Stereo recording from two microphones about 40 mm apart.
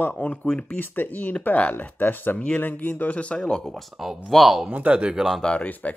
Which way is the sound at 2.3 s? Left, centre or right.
Left.